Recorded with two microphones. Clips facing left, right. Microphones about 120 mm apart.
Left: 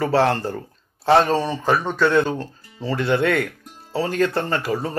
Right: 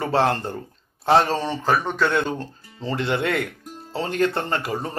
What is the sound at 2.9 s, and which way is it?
Speech, 25° right (ahead or behind).